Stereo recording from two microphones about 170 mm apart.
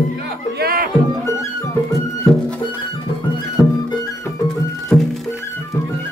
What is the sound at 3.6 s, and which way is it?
Music, 20° left (ahead or behind).